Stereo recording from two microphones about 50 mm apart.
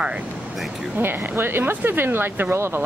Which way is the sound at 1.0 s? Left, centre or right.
Right.